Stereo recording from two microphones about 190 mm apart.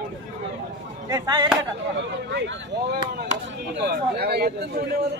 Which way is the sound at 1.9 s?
70° right (ahead or behind).